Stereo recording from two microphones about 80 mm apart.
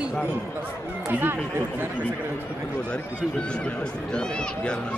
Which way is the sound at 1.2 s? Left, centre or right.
Right.